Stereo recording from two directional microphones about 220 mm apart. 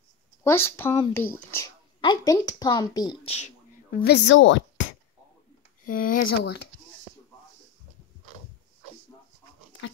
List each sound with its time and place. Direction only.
0.4 s speech: 10° left (ahead or behind); by 3.5 s 30° left (ahead or behind)
4.0 s speech: 50° left (ahead or behind)
5.9 s speech: 40° left (ahead or behind)